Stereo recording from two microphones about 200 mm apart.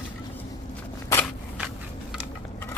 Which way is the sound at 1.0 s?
10° left (ahead or behind).